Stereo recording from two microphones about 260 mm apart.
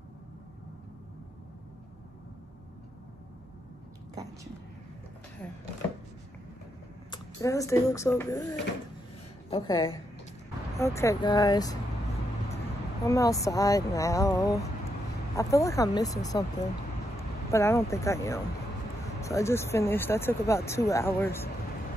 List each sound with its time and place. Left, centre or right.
7.1 s a woman's voice: centre
10.8 s speech: centre
13.0 s speech: centre